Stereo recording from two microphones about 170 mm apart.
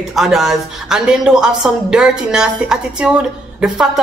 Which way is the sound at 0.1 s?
Centre (ahead or behind).